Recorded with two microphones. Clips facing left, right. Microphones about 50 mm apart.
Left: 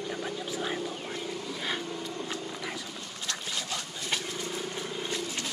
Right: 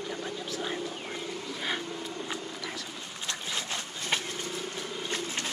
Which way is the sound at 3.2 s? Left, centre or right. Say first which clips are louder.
Right 1 dB; right.